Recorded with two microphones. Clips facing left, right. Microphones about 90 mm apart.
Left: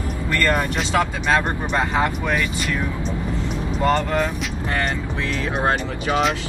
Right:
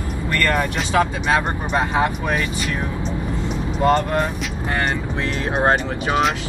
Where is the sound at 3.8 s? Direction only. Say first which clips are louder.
Right 2 dB; 15° right (ahead or behind).